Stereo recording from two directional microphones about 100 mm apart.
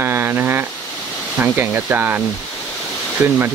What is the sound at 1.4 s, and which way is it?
Speech, 20° right (ahead or behind).